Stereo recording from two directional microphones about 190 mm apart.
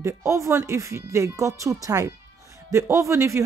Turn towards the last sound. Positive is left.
turn(degrees=-15)  # may be behind; listen again after turning